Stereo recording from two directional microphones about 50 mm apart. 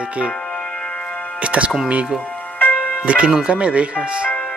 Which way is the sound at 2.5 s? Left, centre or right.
Left.